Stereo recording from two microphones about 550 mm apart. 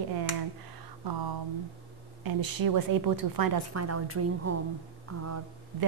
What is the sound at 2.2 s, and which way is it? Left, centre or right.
Speech, right.